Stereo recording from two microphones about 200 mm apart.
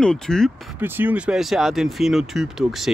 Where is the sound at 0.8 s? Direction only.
10° right (ahead or behind).